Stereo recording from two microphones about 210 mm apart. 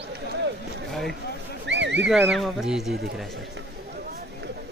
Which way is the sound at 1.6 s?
60° right (ahead or behind).